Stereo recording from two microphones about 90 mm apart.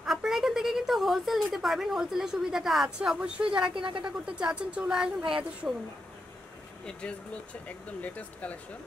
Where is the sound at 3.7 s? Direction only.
70° right (ahead or behind).